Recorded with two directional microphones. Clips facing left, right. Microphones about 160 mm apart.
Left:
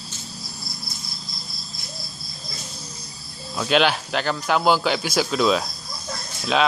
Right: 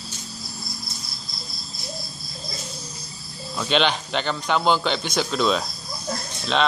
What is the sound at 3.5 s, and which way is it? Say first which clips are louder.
Speech: left 2 dB; 5° left (ahead or behind).